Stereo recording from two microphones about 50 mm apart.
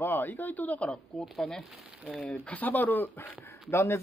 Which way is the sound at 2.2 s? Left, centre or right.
Left.